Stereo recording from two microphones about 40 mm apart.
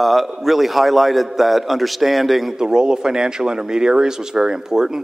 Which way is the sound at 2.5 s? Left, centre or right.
Centre.